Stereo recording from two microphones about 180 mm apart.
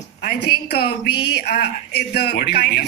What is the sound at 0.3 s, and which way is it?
A woman's voice, 65° left (ahead or behind).